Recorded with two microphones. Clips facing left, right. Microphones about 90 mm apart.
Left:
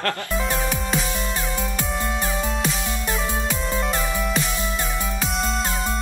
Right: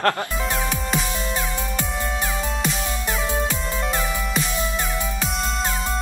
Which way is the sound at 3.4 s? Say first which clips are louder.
Left 1 dB; centre (ahead or behind).